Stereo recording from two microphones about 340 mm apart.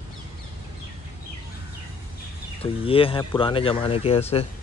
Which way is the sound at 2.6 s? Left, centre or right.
Centre.